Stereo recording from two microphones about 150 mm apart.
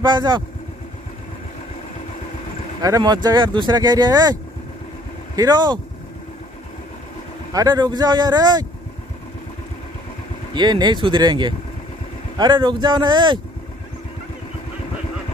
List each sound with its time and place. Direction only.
0.0 s speech: 30° right (ahead or behind)
2.8 s speech: 25° right (ahead or behind)
7.5 s speech: 25° right (ahead or behind)
10.5 s speech: 30° right (ahead or behind)